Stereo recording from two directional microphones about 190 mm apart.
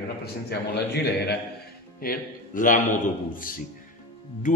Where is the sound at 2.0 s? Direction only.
45° left (ahead or behind).